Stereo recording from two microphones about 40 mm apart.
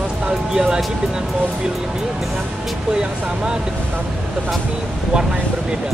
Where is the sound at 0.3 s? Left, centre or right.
Centre.